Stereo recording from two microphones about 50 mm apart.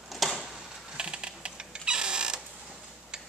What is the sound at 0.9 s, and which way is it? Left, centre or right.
Typing, centre.